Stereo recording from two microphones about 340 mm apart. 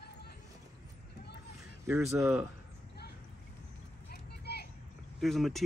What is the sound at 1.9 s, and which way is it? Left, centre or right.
Speech, centre.